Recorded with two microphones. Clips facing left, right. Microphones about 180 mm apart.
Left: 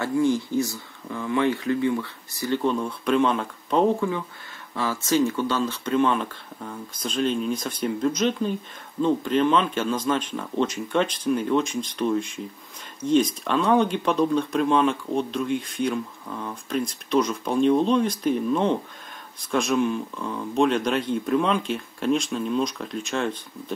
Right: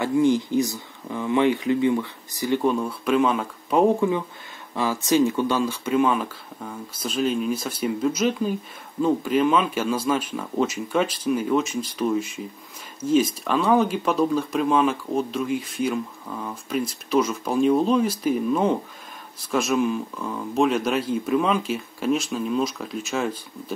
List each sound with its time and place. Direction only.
0.0 s speech: 15° right (ahead or behind)